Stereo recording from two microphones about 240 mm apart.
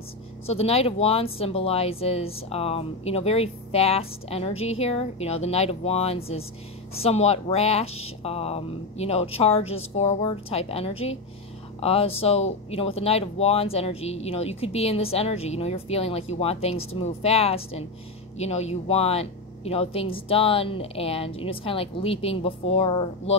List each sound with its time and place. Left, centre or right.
0.5 s speech: left